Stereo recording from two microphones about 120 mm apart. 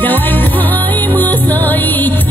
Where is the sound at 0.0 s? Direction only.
15° left (ahead or behind).